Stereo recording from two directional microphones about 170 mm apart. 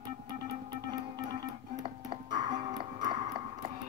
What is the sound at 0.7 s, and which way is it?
Music, 25° right (ahead or behind).